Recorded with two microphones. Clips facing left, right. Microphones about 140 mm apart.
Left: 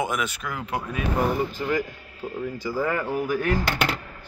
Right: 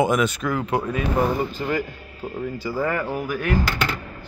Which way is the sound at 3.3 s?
35° left (ahead or behind).